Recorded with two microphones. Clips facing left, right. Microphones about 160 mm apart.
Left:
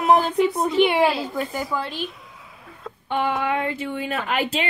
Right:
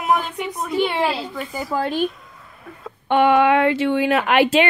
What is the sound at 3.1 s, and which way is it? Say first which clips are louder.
Speech: right 8 dB; 70° right (ahead or behind).